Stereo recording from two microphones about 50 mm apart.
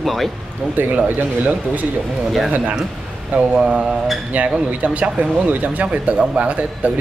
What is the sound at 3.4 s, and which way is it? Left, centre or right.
Speech, centre.